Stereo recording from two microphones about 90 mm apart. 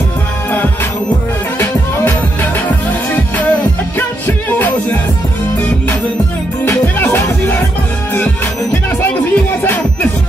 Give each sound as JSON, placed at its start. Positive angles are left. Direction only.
{"t": 4.5, "sound": "music", "side_deg": 20}
{"t": 6.6, "sound": "music", "side_deg": 25}
{"t": 9.0, "sound": "music", "side_deg": 20}